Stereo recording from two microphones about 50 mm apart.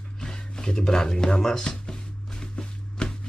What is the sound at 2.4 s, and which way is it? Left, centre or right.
Walk, centre.